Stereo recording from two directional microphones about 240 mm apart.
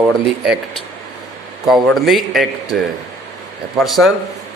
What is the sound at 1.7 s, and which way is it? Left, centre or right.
Speech, centre.